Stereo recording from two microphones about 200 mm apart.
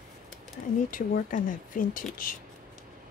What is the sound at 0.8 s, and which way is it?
Speech, 45° left (ahead or behind).